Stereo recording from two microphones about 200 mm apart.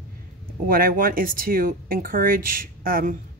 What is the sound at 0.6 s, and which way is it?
Speech, 45° right (ahead or behind).